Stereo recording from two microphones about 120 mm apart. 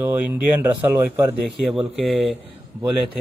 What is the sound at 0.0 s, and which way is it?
A man's voice, 15° right (ahead or behind).